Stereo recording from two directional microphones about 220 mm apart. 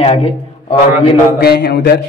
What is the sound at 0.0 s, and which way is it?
Speech, 25° left (ahead or behind).